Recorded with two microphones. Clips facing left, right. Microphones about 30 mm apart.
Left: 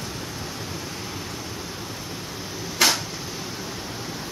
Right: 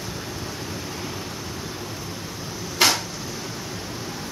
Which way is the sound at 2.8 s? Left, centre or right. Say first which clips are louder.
Right 1 dB; right.